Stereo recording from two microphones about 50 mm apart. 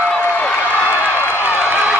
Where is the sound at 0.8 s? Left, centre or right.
Left.